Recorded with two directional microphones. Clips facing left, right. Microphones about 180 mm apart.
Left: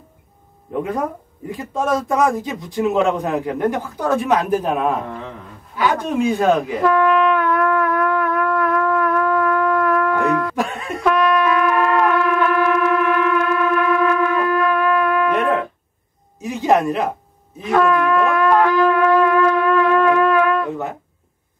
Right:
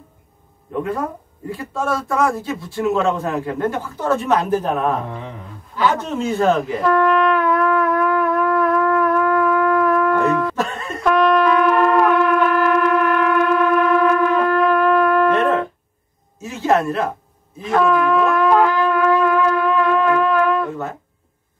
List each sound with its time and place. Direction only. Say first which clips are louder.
1.5 s a man's voice: left 2 dB; 20° left (ahead or behind)
6.8 s shofar: even; 5° left (ahead or behind)
10.5 s a sound: left 1 dB; 10° left (ahead or behind)
11.1 s shofar: right 4 dB; centre (ahead or behind)
16.3 s a man's voice: left 1 dB; 15° left (ahead or behind)
17.6 s shofar: even; centre (ahead or behind)